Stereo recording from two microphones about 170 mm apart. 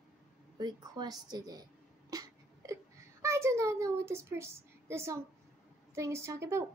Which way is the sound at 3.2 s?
15° right (ahead or behind).